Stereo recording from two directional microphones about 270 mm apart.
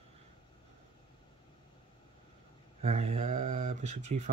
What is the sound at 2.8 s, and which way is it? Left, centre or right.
Speech, right.